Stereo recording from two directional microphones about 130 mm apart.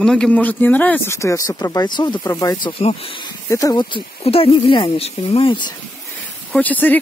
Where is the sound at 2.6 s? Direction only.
45° left (ahead or behind).